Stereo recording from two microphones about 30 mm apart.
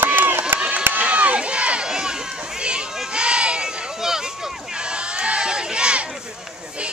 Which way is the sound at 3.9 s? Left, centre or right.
Centre.